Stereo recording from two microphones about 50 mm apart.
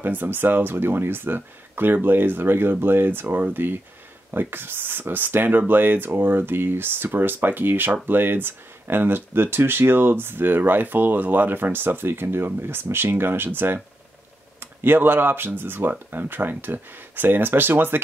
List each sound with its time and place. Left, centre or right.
0.0 s speech: right